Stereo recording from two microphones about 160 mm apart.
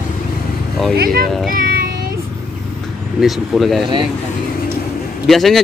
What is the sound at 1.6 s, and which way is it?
Child singing, 65° right (ahead or behind).